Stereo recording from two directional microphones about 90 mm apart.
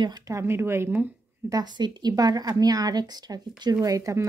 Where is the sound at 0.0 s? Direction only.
50° right (ahead or behind).